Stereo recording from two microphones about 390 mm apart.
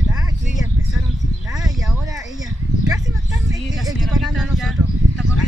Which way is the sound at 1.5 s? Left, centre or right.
Centre.